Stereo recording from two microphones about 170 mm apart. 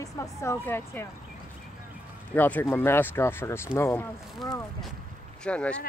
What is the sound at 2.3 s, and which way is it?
Speech, 10° left (ahead or behind).